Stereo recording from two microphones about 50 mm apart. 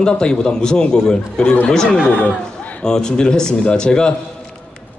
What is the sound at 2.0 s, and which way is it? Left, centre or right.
Speech, left.